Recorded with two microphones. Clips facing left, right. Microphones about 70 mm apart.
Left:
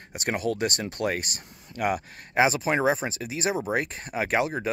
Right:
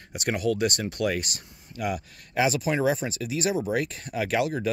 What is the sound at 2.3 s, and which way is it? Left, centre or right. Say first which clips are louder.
Speech: left 2 dB; left.